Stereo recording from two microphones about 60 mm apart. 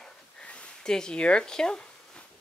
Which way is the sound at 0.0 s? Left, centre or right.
Centre.